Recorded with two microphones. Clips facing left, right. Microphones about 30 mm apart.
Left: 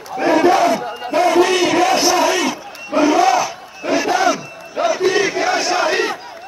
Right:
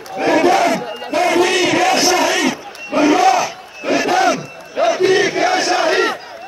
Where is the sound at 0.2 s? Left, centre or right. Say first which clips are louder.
Even; right.